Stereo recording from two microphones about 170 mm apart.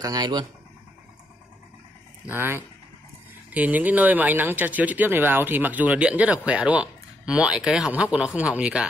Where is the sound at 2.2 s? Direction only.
10° right (ahead or behind).